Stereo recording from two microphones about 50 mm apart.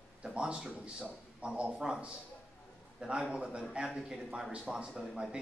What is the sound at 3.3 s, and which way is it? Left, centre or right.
A man's voice, centre.